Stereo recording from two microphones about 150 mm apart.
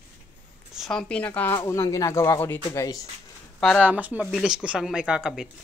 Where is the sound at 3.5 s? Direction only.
5° left (ahead or behind).